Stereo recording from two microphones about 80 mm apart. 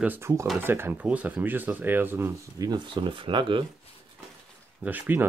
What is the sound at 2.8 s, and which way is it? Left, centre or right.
Speech, right.